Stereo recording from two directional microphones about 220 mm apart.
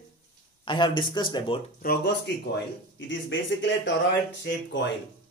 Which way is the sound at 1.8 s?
50° left (ahead or behind).